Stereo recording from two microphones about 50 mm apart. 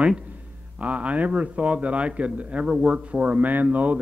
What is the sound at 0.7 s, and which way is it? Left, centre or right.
A man's voice, right.